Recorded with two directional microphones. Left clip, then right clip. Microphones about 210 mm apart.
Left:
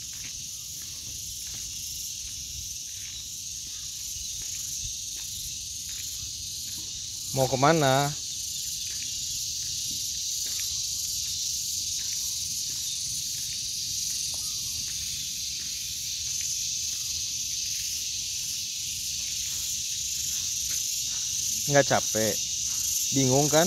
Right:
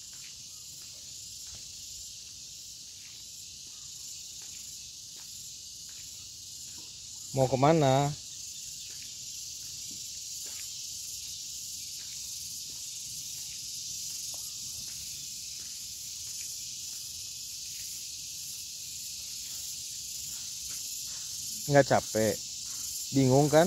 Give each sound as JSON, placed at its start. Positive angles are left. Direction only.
{"t": 7.3, "sound": "speech", "side_deg": 0}
{"t": 21.6, "sound": "speech", "side_deg": -10}